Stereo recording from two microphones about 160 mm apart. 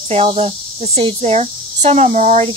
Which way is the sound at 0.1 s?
40° right (ahead or behind).